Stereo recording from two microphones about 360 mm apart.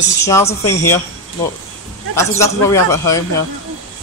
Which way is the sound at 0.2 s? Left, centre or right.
Centre.